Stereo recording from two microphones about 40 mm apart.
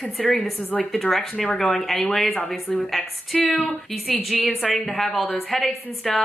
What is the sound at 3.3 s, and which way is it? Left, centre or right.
Speech, left.